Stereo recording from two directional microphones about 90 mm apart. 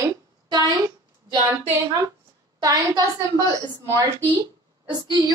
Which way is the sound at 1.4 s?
35° right (ahead or behind).